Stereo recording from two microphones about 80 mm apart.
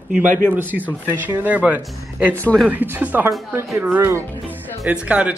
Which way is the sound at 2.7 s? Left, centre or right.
Right.